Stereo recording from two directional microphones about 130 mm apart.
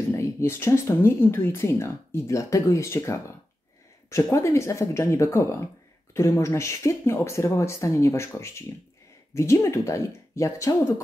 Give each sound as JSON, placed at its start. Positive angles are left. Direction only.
{"t": 0.1, "sound": "speech", "side_deg": 20}